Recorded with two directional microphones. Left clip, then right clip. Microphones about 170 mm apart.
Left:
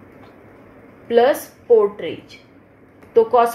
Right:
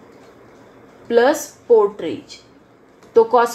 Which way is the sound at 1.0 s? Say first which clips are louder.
Even; 35° right (ahead or behind).